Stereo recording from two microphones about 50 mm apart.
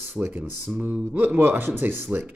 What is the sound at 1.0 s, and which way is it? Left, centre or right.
Speech, right.